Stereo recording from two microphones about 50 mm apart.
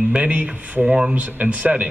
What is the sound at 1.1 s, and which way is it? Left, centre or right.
Speech, right.